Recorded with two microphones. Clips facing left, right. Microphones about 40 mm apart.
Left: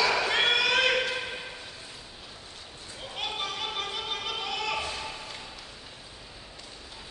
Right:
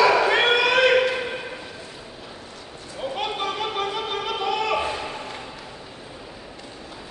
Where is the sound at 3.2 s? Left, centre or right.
Centre.